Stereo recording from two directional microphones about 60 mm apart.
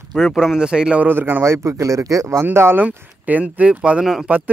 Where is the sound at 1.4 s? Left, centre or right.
Right.